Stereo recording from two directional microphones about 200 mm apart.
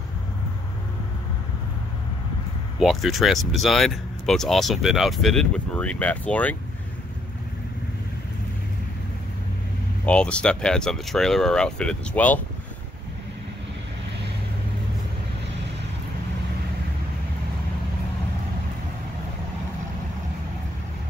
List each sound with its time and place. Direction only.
2.8 s speech: centre (ahead or behind)
10.0 s speech: 5° left (ahead or behind)